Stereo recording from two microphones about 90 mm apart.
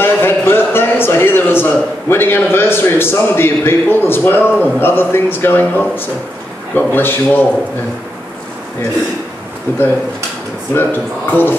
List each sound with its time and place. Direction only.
0.0 s a man's voice: 25° left (ahead or behind)
9.7 s a man's voice: 25° left (ahead or behind)